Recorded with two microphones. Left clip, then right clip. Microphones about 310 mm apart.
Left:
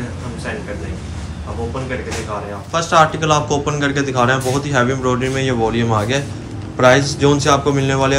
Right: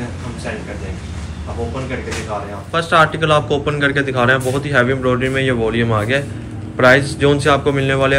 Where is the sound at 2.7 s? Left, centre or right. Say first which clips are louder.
Even; centre.